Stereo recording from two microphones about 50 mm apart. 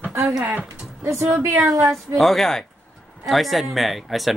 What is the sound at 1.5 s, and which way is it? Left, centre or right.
Speech, right.